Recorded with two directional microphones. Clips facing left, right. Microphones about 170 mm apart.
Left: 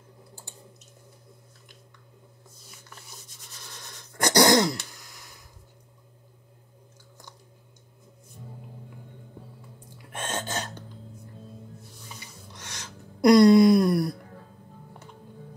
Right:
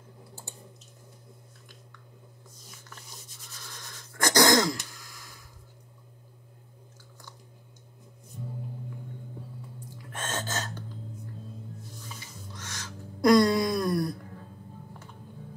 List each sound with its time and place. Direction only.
4.2 s throat clearing: 20° left (ahead or behind)
10.1 s gasp: 15° left (ahead or behind)
12.5 s a sound: 20° left (ahead or behind)